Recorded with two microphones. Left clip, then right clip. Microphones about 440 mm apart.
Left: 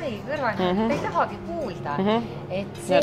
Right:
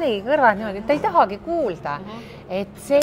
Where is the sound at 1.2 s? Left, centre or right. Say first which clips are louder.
Right 7 dB; right.